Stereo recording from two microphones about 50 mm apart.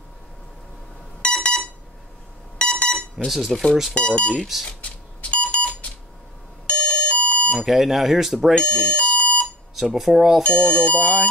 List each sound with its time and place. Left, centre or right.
1.2 s a sound: left
2.6 s alarm: left
3.3 s speech: centre
3.9 s speech: left
4.4 s speech: centre
4.6 s a sound: left
6.7 s doorbell: left
7.5 s speech: centre
8.5 s speech: left
9.1 s alarm: left
9.8 s speech: centre
10.4 s speech: left